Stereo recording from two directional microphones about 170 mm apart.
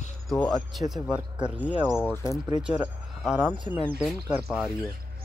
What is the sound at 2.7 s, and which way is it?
Speech, 5° right (ahead or behind).